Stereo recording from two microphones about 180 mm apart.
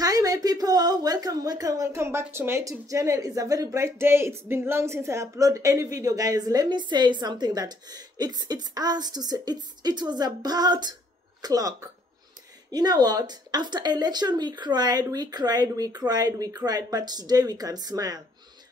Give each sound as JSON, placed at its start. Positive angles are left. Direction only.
{"t": 0.0, "sound": "a woman's voice", "side_deg": -20}